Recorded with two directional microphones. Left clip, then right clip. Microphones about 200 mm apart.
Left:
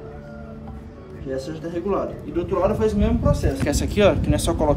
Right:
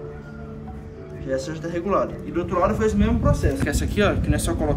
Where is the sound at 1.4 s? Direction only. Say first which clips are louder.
Even; 15° left (ahead or behind).